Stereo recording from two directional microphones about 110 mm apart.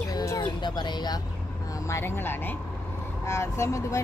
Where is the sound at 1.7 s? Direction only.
25° left (ahead or behind).